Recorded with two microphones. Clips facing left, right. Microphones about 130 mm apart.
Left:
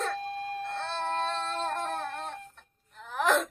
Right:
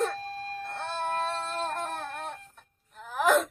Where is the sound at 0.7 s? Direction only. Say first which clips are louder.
Right 2 dB; 10° right (ahead or behind).